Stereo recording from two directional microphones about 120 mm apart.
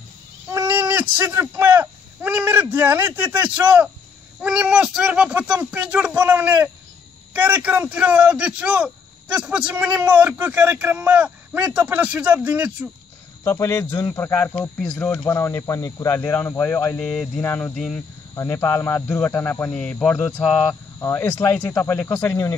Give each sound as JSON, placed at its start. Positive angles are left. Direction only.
{"t": 0.5, "sound": "a man's voice", "side_deg": -20}
{"t": 13.4, "sound": "speech", "side_deg": 20}
{"t": 17.4, "sound": "speech", "side_deg": 20}
{"t": 17.7, "sound": "speech", "side_deg": 0}
{"t": 18.3, "sound": "speech", "side_deg": 25}
{"t": 19.7, "sound": "speech", "side_deg": 5}